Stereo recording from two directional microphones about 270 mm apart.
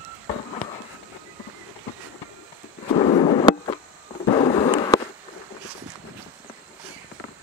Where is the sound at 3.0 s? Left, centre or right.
Left.